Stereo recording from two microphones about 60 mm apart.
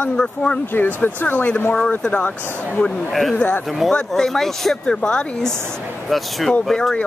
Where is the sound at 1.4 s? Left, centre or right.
Left.